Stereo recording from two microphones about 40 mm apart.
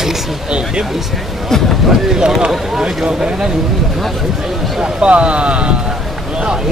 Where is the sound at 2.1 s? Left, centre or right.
Centre.